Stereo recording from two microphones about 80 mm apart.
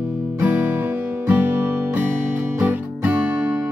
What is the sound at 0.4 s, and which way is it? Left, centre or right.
Guitar, right.